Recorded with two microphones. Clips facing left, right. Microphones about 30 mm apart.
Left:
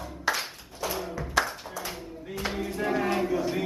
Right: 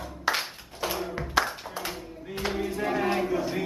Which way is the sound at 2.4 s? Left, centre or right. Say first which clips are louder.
Right 1 dB; centre.